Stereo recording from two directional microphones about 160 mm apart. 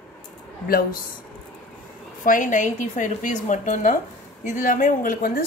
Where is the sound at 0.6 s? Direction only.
65° left (ahead or behind).